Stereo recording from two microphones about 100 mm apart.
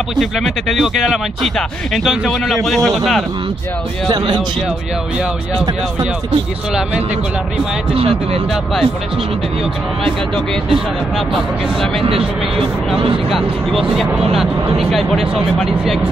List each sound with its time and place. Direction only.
0.1 s speech: centre (ahead or behind)
7.9 s speech: 75° right (ahead or behind)
10.3 s speech: 5° left (ahead or behind)
13.3 s speech: centre (ahead or behind)